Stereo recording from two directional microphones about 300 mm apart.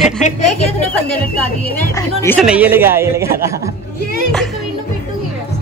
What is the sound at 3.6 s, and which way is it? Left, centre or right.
Speech, left.